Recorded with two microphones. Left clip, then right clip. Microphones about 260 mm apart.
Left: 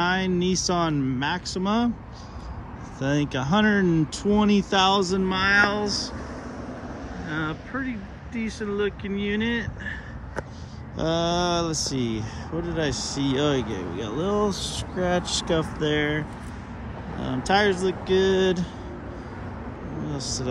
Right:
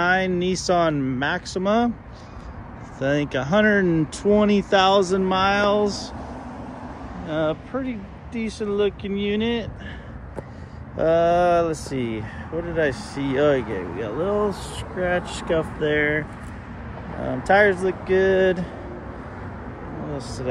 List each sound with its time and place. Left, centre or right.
0.0 s speech: centre
3.0 s speech: centre
7.2 s speech: centre
11.0 s speech: centre
20.2 s speech: centre